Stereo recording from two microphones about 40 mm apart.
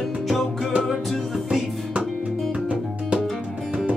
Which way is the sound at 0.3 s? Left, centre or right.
Centre.